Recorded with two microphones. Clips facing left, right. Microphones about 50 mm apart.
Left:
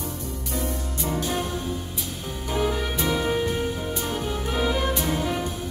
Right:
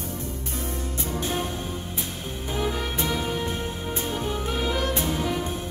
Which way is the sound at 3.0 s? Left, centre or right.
Left.